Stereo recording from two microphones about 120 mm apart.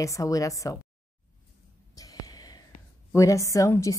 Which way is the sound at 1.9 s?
30° left (ahead or behind).